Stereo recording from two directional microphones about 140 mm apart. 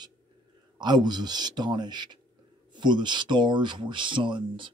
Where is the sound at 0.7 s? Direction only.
30° right (ahead or behind).